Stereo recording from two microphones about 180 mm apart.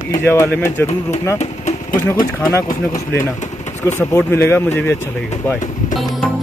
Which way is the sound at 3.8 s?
15° left (ahead or behind).